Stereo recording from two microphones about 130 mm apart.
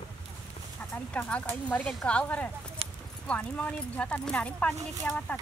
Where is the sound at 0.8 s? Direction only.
10° left (ahead or behind).